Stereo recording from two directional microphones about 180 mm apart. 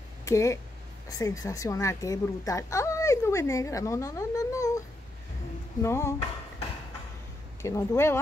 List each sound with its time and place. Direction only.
0.2 s a woman's voice: 15° left (ahead or behind)
7.6 s speech: 15° left (ahead or behind)